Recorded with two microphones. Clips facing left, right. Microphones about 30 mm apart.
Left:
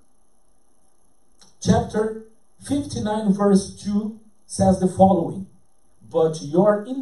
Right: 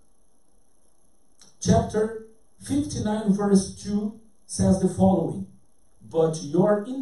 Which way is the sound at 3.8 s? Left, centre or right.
Centre.